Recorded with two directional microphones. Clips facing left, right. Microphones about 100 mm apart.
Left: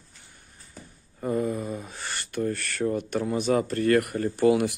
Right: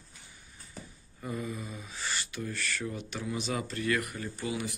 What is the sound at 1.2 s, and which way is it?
Speech, 45° left (ahead or behind).